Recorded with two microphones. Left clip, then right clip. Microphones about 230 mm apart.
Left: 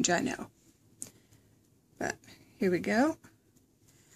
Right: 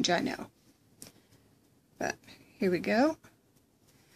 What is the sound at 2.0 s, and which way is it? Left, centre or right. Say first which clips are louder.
Speech: right 1 dB; centre.